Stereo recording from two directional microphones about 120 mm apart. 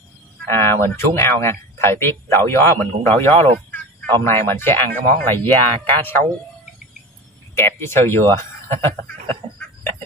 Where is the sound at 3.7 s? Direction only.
15° left (ahead or behind).